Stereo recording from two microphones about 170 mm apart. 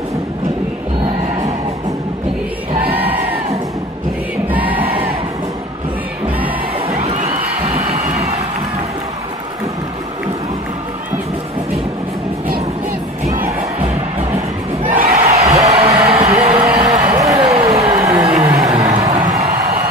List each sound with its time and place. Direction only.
2.9 s crowd: 10° right (ahead or behind)
4.5 s crowd: 10° right (ahead or behind)
6.9 s crowd: 35° right (ahead or behind)
14.9 s crowd: 45° right (ahead or behind)
15.3 s music: 40° right (ahead or behind)
16.7 s a sound: 30° right (ahead or behind)
17.4 s a sound: 35° right (ahead or behind)
18.6 s music: 40° right (ahead or behind)